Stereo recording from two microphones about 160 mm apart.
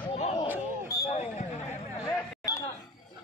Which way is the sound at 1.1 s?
45° left (ahead or behind).